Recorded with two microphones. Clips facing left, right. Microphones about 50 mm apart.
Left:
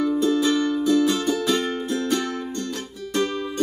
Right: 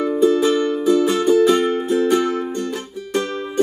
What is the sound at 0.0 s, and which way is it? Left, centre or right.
Music, right.